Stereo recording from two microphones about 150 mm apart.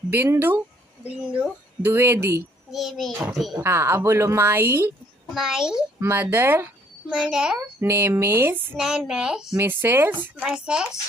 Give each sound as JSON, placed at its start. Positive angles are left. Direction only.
{"t": 0.1, "sound": "speech", "side_deg": -15}
{"t": 2.7, "sound": "a woman's voice", "side_deg": 0}
{"t": 3.6, "sound": "speech", "side_deg": -15}
{"t": 5.3, "sound": "a woman's voice", "side_deg": 0}
{"t": 5.9, "sound": "speech", "side_deg": -15}
{"t": 8.7, "sound": "a woman's voice", "side_deg": -5}